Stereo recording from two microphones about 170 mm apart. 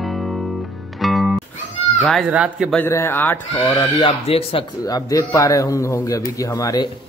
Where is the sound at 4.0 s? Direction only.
35° left (ahead or behind).